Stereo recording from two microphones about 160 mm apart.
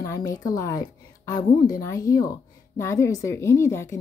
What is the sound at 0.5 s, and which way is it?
A woman's voice, 20° left (ahead or behind).